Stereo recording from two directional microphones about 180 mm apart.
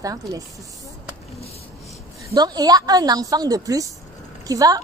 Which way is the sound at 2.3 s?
20° right (ahead or behind).